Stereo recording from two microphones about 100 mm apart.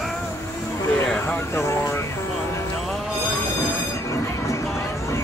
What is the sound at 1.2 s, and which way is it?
Vehicle, 30° left (ahead or behind).